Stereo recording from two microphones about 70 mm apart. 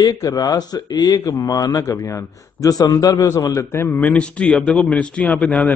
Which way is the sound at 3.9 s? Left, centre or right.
Centre.